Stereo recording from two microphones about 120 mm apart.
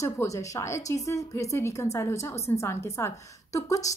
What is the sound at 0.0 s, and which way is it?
A woman's voice, 25° left (ahead or behind).